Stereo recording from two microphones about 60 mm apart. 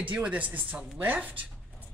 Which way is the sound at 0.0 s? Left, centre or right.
Right.